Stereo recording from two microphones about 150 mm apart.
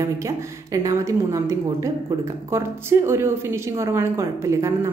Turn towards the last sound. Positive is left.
turn(degrees=-20)  # may be behind; listen again after turning